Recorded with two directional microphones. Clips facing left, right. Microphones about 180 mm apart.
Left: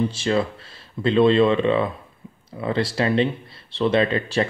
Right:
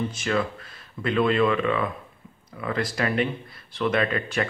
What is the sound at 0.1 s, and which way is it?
Speech, 30° left (ahead or behind).